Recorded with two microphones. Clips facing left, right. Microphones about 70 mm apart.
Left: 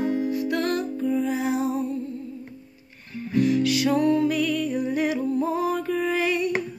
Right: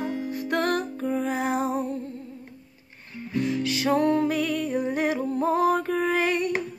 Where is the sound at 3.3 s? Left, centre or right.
Right.